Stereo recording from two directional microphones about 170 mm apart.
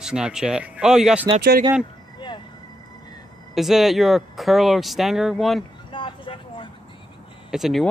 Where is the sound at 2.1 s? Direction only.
25° left (ahead or behind).